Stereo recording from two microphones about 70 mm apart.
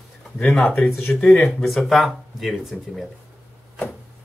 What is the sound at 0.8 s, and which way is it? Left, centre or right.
Speech, left.